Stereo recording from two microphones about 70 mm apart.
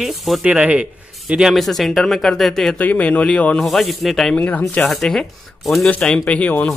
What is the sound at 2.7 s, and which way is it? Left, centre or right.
Speech, left.